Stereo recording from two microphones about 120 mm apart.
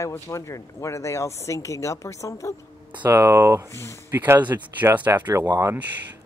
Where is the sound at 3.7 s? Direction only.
25° left (ahead or behind).